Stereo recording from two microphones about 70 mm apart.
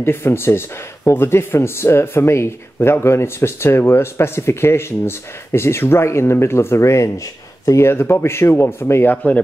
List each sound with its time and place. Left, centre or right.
0.0 s speech: left